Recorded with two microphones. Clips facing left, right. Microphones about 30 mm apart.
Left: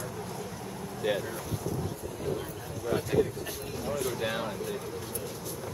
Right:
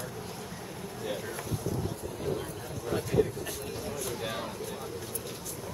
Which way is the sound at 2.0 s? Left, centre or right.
Centre.